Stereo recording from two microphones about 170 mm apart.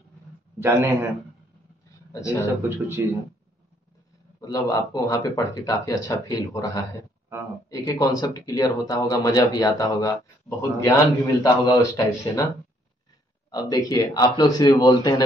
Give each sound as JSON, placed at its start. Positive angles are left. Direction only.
{"t": 0.6, "sound": "speech", "side_deg": -15}
{"t": 1.9, "sound": "a sound", "side_deg": 15}
{"t": 2.4, "sound": "speech", "side_deg": -15}
{"t": 4.4, "sound": "speech", "side_deg": 20}
{"t": 13.5, "sound": "speech", "side_deg": 20}